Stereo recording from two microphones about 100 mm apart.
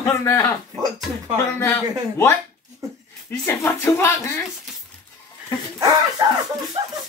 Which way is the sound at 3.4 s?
25° left (ahead or behind).